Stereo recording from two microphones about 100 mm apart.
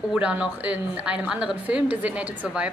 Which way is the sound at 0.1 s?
10° right (ahead or behind).